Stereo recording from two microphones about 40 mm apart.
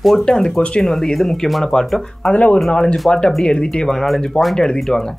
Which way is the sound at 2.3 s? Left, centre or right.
Left.